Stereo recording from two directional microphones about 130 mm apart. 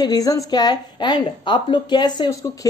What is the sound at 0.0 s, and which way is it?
A woman's voice, 30° left (ahead or behind).